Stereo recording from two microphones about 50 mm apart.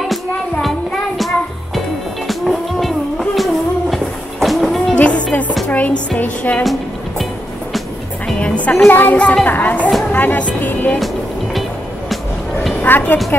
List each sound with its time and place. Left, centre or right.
2.2 s music: centre
3.9 s train: centre
4.9 s music: left
5.7 s speech: left
6.6 s music: centre
8.4 s music: left
8.8 s speech: left
9.1 s a child's voice: left
9.5 s speech: left
10.6 s music: left
12.8 s speech: left